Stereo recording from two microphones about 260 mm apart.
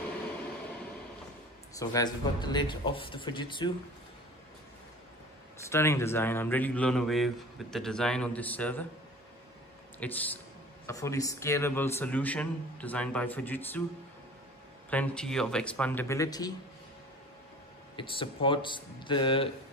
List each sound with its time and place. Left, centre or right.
1.8 s a man's voice: centre
5.7 s a man's voice: centre
9.9 s a man's voice: centre
14.9 s a man's voice: centre
17.9 s a man's voice: centre